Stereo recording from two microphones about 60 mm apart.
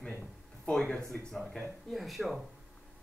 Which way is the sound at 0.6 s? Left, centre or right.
Centre.